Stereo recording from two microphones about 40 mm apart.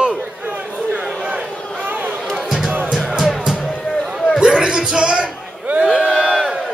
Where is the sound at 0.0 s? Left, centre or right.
Right.